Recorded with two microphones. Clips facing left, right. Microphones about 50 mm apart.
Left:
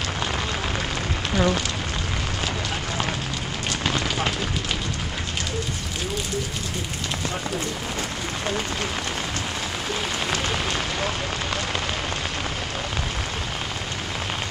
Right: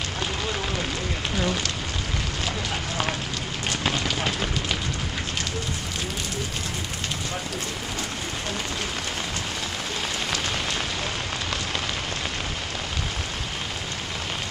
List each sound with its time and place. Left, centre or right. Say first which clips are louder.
1.3 s speech: left 6 dB; left